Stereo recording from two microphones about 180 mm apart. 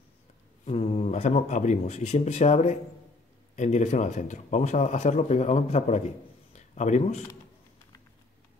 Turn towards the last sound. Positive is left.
turn(degrees=40)  # may be behind; listen again after turning